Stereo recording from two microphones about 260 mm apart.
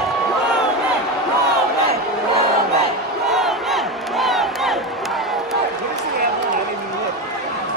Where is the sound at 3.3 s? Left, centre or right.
Centre.